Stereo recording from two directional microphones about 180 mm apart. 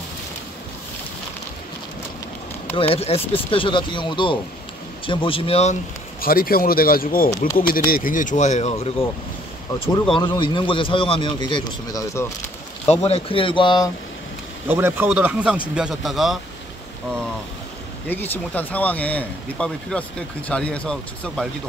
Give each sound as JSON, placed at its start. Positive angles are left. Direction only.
{"t": 2.9, "sound": "a man's voice", "side_deg": 35}
{"t": 6.2, "sound": "speech", "side_deg": 55}
{"t": 10.1, "sound": "a man's voice", "side_deg": 25}
{"t": 12.8, "sound": "a man's voice", "side_deg": 35}
{"t": 14.7, "sound": "speech", "side_deg": -10}
{"t": 18.0, "sound": "speech", "side_deg": 10}